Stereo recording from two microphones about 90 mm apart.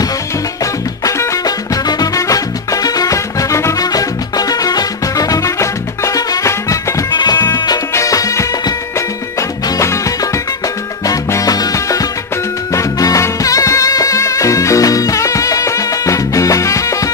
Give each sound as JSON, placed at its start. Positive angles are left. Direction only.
{"t": 1.0, "sound": "music", "side_deg": 40}
{"t": 7.9, "sound": "music", "side_deg": 35}
{"t": 9.8, "sound": "music", "side_deg": 35}